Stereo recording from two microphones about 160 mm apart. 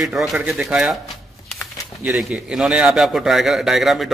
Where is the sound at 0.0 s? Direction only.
Centre (ahead or behind).